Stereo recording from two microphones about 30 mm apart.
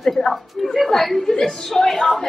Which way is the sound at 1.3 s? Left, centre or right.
Centre.